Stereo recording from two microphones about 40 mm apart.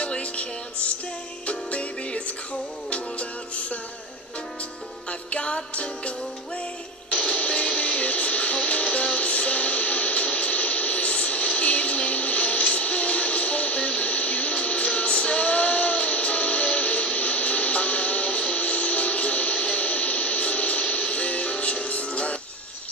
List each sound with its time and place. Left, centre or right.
0.0 s music: left
5.3 s music: left